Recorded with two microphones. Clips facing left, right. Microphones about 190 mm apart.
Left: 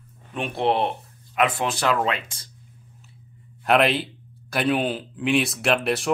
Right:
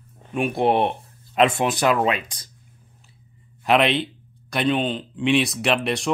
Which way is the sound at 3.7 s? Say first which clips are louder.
Right 1 dB; centre (ahead or behind).